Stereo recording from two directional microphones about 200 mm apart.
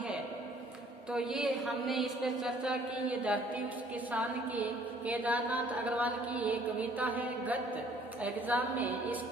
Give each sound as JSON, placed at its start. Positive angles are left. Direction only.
{"t": 1.1, "sound": "a woman's voice", "side_deg": -5}